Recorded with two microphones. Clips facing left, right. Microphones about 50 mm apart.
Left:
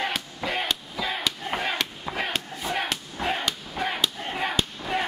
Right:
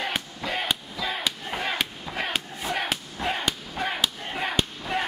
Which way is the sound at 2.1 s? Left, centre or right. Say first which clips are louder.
Even; centre.